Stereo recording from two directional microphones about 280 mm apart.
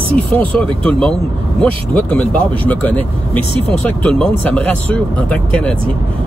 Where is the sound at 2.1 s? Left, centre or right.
Centre.